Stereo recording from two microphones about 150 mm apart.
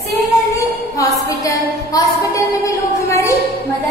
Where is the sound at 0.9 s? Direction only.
25° left (ahead or behind).